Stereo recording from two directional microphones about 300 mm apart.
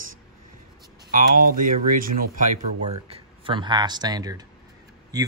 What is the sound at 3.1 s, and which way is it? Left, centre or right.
Speech, centre.